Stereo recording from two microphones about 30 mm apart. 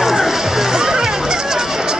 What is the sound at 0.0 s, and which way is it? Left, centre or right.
Music, centre.